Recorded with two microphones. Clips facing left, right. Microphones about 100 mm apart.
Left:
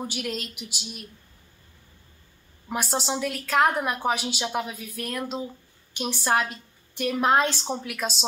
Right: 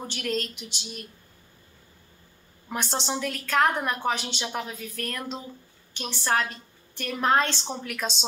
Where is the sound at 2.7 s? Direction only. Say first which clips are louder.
Left 2 dB; 5° left (ahead or behind).